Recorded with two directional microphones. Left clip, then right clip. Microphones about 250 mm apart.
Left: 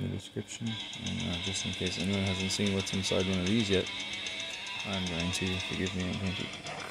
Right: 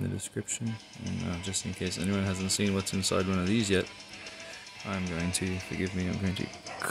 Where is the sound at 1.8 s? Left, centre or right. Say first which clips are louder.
Even; centre.